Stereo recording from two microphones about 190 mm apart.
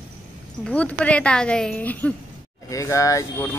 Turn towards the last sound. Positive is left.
turn(degrees=15)  # may be behind; listen again after turning